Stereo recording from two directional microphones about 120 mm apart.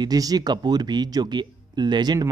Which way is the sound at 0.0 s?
30° right (ahead or behind).